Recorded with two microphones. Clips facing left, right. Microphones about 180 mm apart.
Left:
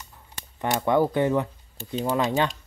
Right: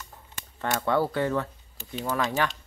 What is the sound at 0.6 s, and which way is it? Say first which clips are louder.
Speech: left 4 dB; 15° left (ahead or behind).